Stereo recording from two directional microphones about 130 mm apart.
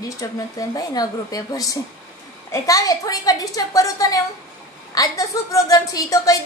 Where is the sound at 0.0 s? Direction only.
30° left (ahead or behind).